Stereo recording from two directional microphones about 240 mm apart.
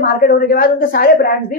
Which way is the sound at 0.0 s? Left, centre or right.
Left.